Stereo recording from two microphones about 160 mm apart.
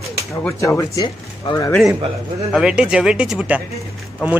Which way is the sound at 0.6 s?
20° left (ahead or behind).